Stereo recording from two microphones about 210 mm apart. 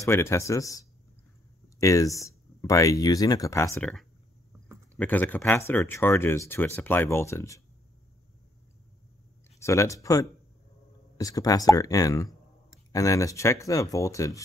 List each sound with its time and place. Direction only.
0.0 s speech: 10° left (ahead or behind)
4.9 s speech: 10° left (ahead or behind)
9.6 s speech: 15° left (ahead or behind)